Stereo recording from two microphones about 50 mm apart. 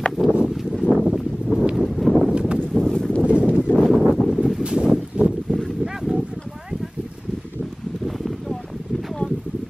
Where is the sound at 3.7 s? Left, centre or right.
Left.